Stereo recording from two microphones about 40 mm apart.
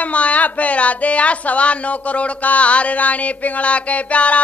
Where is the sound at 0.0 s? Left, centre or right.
Left.